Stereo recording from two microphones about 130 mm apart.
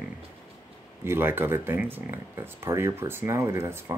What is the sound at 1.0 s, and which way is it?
Speech, 15° right (ahead or behind).